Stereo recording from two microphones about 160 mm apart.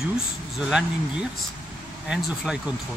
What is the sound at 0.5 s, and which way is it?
Speech, 5° right (ahead or behind).